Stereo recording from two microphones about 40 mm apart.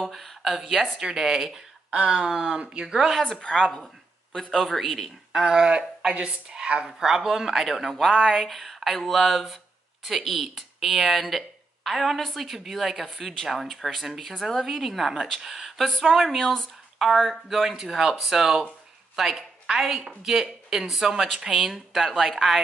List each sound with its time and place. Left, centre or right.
0.0 s speech: centre
2.6 s speech: right
3.3 s a woman's voice: left
4.4 s speech: centre
5.3 s speech: centre
5.7 s speech: right
6.9 s speech: centre
17.5 s speech: centre